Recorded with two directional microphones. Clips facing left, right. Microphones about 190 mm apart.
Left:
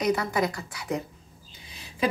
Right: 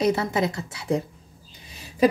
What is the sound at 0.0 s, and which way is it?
A woman's voice, 25° right (ahead or behind).